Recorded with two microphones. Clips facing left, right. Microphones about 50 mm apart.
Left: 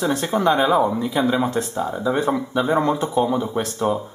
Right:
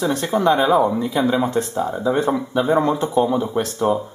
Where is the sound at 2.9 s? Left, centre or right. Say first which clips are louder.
Right 2 dB; right.